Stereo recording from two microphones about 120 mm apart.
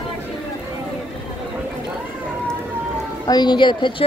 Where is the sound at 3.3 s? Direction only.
40° left (ahead or behind).